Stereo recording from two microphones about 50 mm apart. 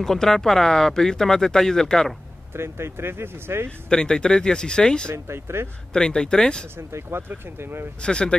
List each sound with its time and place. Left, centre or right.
0.0 s speech: centre
2.5 s speech: right
3.9 s speech: centre
5.1 s speech: right
5.9 s speech: centre
6.9 s speech: right
8.0 s speech: centre